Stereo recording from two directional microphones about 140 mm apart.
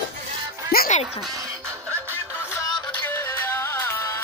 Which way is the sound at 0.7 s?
60° left (ahead or behind).